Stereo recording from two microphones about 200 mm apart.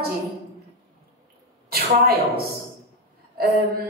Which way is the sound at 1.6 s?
50° right (ahead or behind).